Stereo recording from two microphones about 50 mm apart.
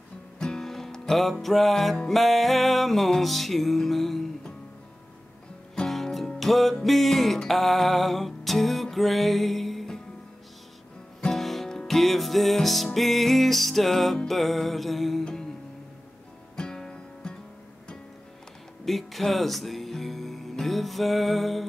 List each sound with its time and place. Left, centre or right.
0.4 s music: centre
5.9 s music: centre
11.1 s music: centre
16.5 s music: centre
18.9 s music: centre